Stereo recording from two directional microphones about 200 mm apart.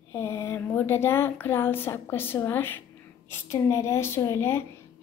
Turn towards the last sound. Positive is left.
turn(degrees=15)  # may be behind; listen again after turning